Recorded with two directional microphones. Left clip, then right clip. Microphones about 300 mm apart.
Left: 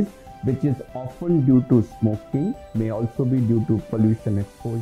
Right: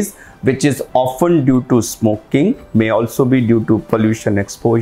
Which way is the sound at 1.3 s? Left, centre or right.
Centre.